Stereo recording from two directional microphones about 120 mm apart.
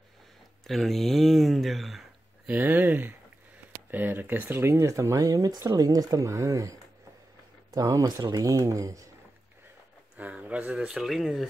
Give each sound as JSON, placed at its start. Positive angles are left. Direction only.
{"t": 0.7, "sound": "a sound", "side_deg": 0}
{"t": 2.5, "sound": "speech", "side_deg": -15}
{"t": 10.1, "sound": "speech", "side_deg": -10}